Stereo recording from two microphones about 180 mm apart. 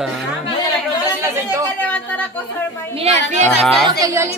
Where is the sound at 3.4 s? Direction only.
Centre (ahead or behind).